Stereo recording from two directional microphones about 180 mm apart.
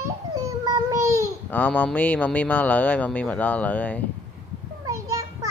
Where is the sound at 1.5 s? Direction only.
10° left (ahead or behind).